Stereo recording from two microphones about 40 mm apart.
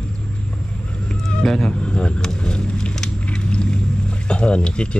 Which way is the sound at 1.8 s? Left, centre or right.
Left.